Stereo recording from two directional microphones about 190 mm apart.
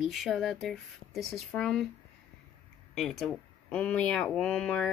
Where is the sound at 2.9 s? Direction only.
Centre (ahead or behind).